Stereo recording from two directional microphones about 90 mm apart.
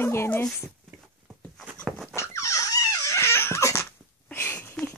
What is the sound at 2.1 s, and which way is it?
Dog, 30° left (ahead or behind).